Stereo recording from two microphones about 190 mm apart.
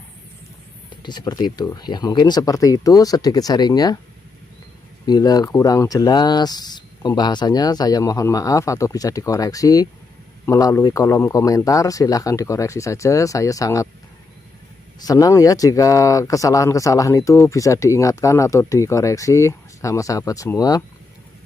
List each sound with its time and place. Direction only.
1.0 s speech: 20° left (ahead or behind)
5.0 s speech: 20° left (ahead or behind)
15.0 s speech: 20° left (ahead or behind)